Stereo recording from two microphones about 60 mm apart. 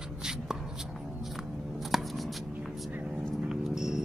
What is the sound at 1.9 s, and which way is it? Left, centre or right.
Shuffling cards, centre.